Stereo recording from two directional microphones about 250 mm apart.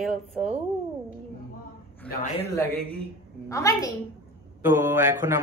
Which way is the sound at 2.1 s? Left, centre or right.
Left.